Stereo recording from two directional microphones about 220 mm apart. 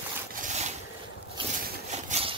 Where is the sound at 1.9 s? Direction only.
30° right (ahead or behind).